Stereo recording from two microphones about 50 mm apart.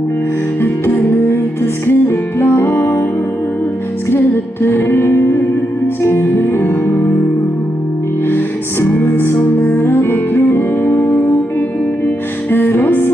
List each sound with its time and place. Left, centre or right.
0.6 s music: left
4.1 s music: left
8.3 s music: left
12.4 s music: left